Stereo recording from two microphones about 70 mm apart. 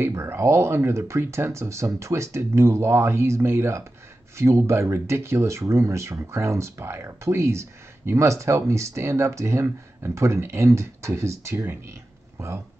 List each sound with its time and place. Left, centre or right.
0.0 s speech: right